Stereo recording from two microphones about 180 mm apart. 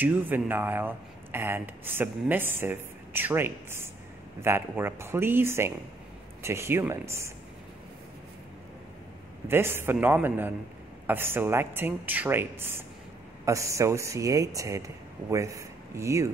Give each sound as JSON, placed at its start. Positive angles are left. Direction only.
{"t": 0.0, "sound": "speech", "side_deg": -10}
{"t": 9.5, "sound": "speech", "side_deg": -15}